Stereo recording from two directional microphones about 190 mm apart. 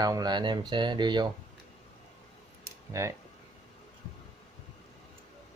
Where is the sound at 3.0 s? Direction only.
15° right (ahead or behind).